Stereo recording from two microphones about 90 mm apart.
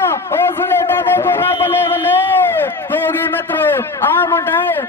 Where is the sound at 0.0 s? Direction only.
30° left (ahead or behind).